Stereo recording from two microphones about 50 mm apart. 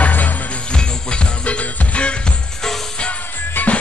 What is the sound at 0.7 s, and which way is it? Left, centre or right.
Music, centre.